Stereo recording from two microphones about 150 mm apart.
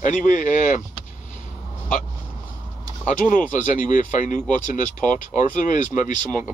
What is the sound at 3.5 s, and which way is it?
Speech, 60° left (ahead or behind).